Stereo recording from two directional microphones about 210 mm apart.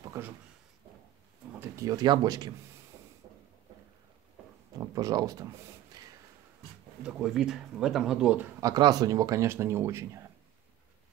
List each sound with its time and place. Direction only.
0.2 s drawer open or close: 15° right (ahead or behind)
1.6 s speech: 15° right (ahead or behind)
4.7 s speech: 15° right (ahead or behind)
6.0 s a sound: 15° right (ahead or behind)
7.0 s speech: 5° right (ahead or behind)
8.5 s speech: 20° right (ahead or behind)